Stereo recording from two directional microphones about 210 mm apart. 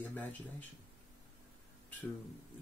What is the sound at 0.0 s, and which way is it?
Speech, 10° left (ahead or behind).